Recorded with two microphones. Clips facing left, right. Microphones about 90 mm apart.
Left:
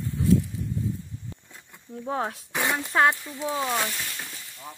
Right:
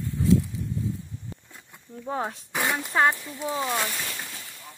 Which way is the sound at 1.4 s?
Centre (ahead or behind).